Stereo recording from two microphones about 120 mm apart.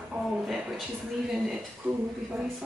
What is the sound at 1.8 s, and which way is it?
Speech, 20° right (ahead or behind).